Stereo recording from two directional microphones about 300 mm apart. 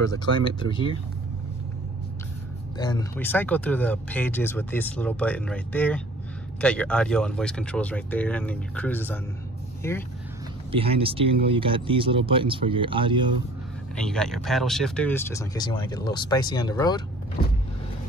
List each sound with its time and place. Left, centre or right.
0.1 s speech: centre
2.8 s speech: centre
10.7 s speech: centre
13.9 s speech: centre